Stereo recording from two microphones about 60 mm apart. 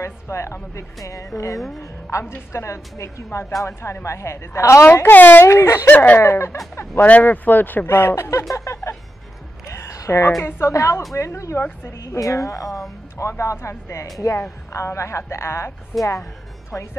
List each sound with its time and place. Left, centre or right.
0.0 s a woman's voice: left
4.8 s speech: left
5.5 s speech: left
7.0 s speech: left
7.9 s speech: left
9.7 s a sound: left
10.4 s a woman's voice: left
14.2 s a woman's voice: left